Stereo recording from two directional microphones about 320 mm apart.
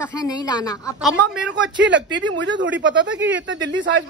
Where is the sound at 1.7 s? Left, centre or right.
Right.